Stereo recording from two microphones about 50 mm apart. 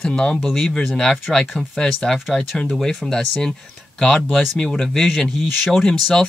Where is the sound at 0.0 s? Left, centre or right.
Centre.